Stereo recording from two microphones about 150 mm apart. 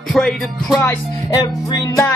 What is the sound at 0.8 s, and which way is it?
Music, 20° left (ahead or behind).